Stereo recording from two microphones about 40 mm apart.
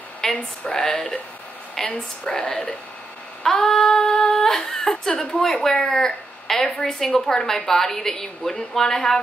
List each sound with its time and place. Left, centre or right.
0.2 s a woman's voice: centre
2.3 s speech: left
3.6 s speech: centre